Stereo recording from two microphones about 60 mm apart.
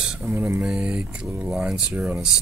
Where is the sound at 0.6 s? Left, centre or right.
Centre.